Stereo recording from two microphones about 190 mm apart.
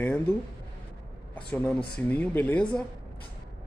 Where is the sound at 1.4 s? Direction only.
5° left (ahead or behind).